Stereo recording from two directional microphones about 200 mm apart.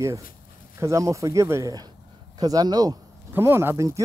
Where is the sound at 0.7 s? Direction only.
15° right (ahead or behind).